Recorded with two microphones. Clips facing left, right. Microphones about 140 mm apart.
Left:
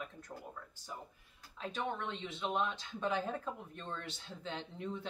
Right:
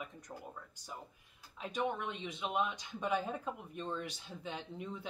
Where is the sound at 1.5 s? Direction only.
15° right (ahead or behind).